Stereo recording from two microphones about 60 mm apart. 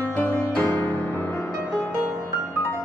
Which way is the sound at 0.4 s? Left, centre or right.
Left.